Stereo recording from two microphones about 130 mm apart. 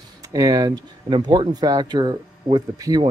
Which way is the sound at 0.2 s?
25° right (ahead or behind).